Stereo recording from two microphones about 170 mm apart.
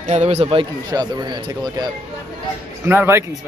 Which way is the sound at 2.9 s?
15° right (ahead or behind).